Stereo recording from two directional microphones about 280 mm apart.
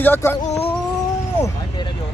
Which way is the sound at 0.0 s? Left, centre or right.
Centre.